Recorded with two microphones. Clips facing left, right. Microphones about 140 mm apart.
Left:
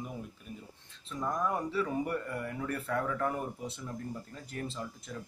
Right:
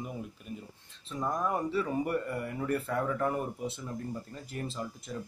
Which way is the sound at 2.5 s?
5° right (ahead or behind).